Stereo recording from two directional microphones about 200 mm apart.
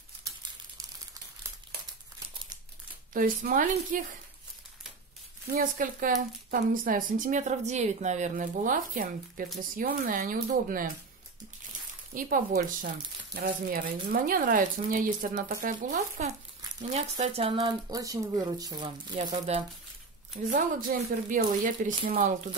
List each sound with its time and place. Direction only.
3.1 s speech: 45° right (ahead or behind)
5.5 s speech: 45° right (ahead or behind)
12.1 s speech: 45° right (ahead or behind); by 18.9 s 20° right (ahead or behind)
19.3 s speech: 35° right (ahead or behind)